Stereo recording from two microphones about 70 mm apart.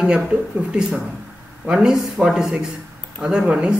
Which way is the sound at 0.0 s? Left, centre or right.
Centre.